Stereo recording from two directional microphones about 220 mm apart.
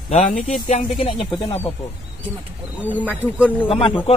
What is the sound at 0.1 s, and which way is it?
Speech, 30° left (ahead or behind).